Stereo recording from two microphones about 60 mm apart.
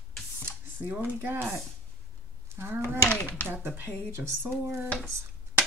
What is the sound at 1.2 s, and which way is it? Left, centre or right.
Speech, right.